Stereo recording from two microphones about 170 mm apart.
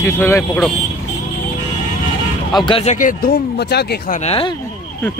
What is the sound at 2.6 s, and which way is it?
Speech, 35° left (ahead or behind).